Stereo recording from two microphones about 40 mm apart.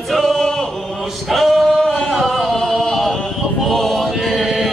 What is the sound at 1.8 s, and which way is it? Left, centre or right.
Singing, left.